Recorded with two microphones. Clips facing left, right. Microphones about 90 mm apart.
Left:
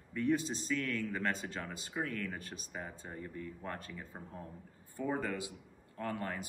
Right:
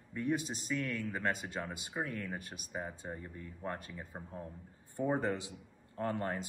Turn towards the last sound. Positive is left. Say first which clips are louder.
# right 3 dB
turn(degrees=-30)  # may be behind; listen again after turning